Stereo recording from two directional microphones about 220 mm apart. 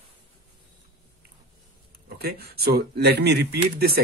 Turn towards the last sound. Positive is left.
turn(degrees=-45)  # may be behind; listen again after turning